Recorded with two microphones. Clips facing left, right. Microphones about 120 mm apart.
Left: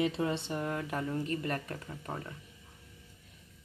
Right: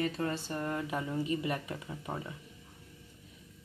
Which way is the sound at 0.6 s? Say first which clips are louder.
Even; centre (ahead or behind).